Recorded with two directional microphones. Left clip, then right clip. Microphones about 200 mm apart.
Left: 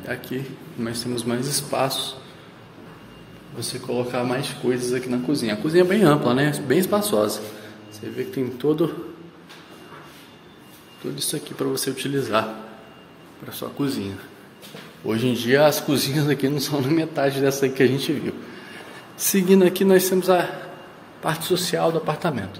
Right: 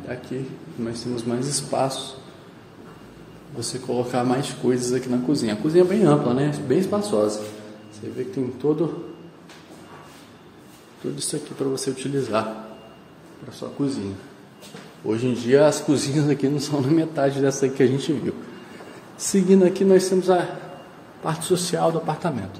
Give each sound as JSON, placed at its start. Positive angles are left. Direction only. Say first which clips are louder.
{"t": 0.1, "sound": "a man's voice", "louder": "left 2 dB", "side_deg": 0}
{"t": 3.5, "sound": "speech", "louder": "even", "side_deg": -20}
{"t": 5.9, "sound": "speech", "louder": "left 1 dB", "side_deg": 0}
{"t": 11.6, "sound": "speech", "louder": "left 1 dB", "side_deg": -5}
{"t": 13.5, "sound": "speech", "louder": "even", "side_deg": 5}
{"t": 15.0, "sound": "a man's voice", "louder": "even", "side_deg": 0}